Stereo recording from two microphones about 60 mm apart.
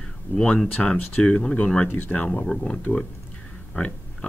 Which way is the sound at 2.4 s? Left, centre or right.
Centre.